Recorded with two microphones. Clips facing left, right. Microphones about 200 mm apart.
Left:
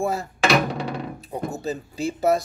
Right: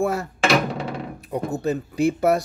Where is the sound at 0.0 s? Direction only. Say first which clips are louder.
Right 2 dB; 65° right (ahead or behind).